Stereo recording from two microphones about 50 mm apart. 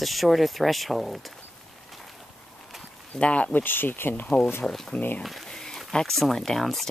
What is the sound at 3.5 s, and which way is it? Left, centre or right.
Speech, left.